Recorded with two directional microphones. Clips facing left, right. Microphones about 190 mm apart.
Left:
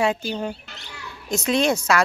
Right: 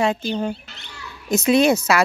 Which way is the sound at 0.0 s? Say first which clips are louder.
Right 2 dB; 10° left (ahead or behind).